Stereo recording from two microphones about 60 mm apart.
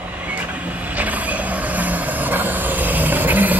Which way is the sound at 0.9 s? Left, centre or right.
Right.